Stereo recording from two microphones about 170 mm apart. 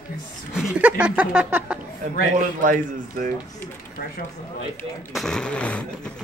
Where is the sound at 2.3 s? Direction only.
50° right (ahead or behind).